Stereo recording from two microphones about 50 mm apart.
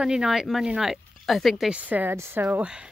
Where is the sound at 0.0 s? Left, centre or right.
Centre.